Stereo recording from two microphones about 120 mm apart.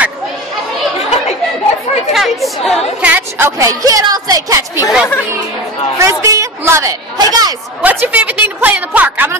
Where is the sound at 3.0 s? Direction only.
15° right (ahead or behind).